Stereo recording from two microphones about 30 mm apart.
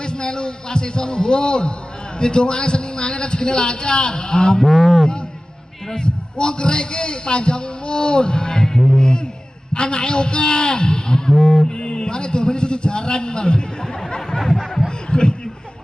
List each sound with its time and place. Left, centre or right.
0.0 s a man's voice: left
4.6 s speech: centre
5.9 s a man's voice: left
9.8 s a man's voice: left
14.4 s a sound: centre
15.0 s speech: left